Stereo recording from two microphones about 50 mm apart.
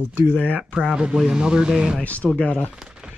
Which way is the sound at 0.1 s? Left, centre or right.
Right.